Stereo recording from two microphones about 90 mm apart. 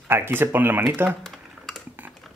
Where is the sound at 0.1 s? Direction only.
25° right (ahead or behind).